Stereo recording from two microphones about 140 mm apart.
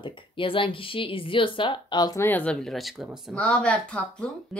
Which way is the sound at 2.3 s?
10° left (ahead or behind).